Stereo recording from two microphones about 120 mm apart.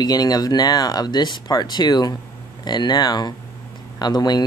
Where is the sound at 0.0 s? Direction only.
35° left (ahead or behind).